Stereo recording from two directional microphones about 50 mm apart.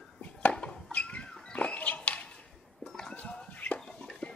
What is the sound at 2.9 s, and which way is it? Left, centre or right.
Music, centre.